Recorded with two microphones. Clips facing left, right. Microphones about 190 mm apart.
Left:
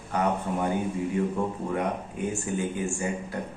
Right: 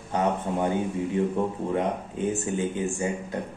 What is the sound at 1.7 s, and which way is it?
Speech, 25° right (ahead or behind).